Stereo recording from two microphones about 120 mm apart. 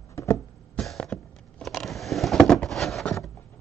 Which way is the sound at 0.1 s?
25° left (ahead or behind).